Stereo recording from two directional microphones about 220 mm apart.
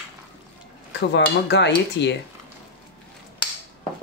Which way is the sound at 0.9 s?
50° left (ahead or behind).